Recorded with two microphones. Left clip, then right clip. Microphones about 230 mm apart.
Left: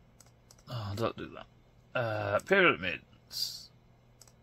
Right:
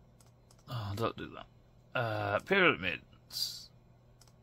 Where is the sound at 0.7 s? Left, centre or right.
Centre.